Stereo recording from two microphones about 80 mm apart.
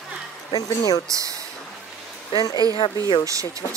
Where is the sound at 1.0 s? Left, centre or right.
Right.